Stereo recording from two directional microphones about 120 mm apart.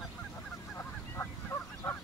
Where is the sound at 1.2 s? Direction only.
20° left (ahead or behind).